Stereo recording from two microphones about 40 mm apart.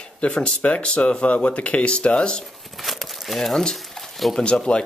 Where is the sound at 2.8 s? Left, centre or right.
Centre.